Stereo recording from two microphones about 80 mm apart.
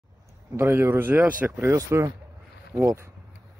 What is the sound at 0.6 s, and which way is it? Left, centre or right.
Speech, right.